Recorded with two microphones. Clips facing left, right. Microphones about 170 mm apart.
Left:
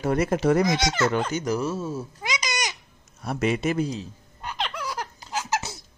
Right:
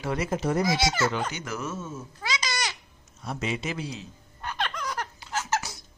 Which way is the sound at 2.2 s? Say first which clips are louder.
Even; 15° left (ahead or behind).